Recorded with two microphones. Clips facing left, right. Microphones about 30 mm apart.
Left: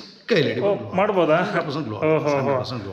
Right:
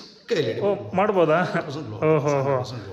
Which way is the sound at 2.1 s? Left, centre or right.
Left.